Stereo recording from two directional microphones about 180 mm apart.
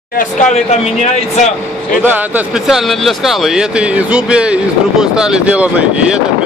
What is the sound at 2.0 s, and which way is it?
Speech, 10° right (ahead or behind).